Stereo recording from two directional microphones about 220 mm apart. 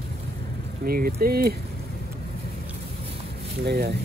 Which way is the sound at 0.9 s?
40° right (ahead or behind).